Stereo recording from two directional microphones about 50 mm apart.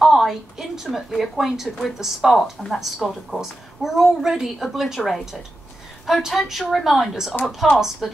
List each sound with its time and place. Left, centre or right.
0.0 s a woman's voice: centre